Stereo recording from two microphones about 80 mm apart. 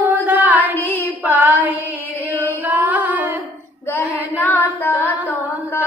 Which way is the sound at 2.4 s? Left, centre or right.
Right.